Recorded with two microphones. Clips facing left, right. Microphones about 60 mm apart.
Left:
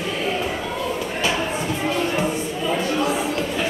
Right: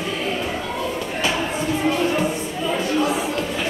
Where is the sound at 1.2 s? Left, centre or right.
Centre.